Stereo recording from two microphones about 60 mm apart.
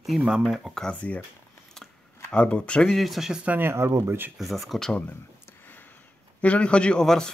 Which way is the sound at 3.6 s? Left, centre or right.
Right.